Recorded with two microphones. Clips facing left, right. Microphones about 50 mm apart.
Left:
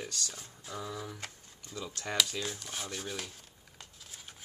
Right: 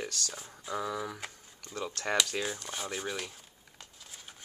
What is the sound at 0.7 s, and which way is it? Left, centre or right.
Speech, right.